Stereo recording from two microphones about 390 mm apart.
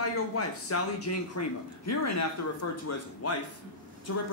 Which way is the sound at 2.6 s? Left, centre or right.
Left.